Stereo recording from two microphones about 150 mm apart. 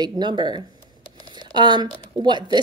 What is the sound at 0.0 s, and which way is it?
A woman's voice, 30° right (ahead or behind).